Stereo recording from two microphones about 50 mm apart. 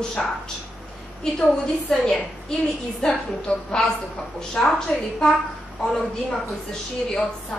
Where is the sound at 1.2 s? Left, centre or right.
Centre.